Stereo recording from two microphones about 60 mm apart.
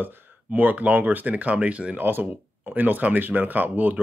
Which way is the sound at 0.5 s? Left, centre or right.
Right.